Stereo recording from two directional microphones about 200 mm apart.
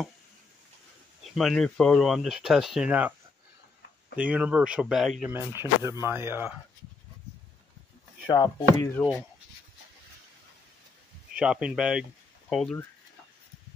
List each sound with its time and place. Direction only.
1.3 s speech: centre (ahead or behind)
4.2 s speech: 5° right (ahead or behind)
5.6 s speech: 15° right (ahead or behind)
8.3 s speech: 15° left (ahead or behind)
11.3 s speech: 5° right (ahead or behind)